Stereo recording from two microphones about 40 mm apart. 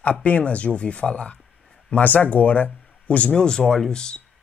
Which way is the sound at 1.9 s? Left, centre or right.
Left.